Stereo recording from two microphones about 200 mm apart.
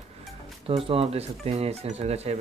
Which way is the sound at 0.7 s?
30° right (ahead or behind).